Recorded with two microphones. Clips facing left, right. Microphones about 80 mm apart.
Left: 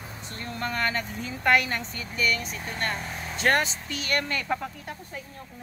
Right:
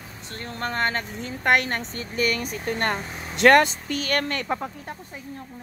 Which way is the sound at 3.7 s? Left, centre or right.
Right.